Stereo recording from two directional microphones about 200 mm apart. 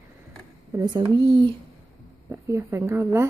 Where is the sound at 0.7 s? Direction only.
25° right (ahead or behind).